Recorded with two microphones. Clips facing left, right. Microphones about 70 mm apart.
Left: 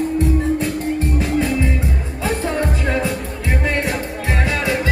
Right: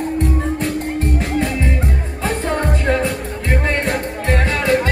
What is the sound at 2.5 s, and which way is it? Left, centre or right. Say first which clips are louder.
Music: right 1 dB; right.